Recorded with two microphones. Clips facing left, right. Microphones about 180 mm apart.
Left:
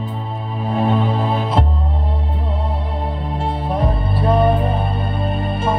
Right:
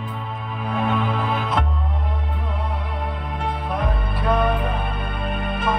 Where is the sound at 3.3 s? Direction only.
30° left (ahead or behind).